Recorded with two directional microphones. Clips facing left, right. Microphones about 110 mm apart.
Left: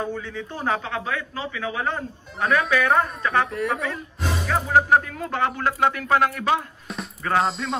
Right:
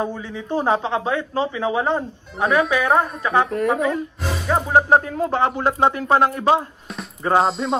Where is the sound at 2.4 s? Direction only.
Centre (ahead or behind).